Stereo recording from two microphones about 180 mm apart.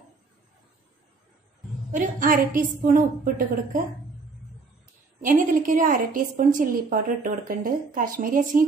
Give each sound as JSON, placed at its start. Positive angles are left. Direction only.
{"t": 1.9, "sound": "a woman's voice", "side_deg": -50}
{"t": 5.2, "sound": "a woman's voice", "side_deg": -45}